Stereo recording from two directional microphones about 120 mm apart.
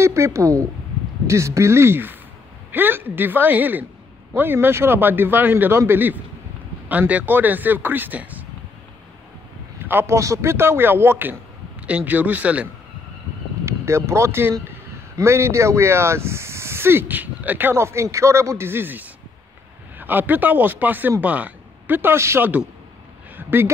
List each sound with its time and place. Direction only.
0.0 s speech: 25° right (ahead or behind)
9.8 s speech: 20° right (ahead or behind)
13.7 s speech: 25° right (ahead or behind)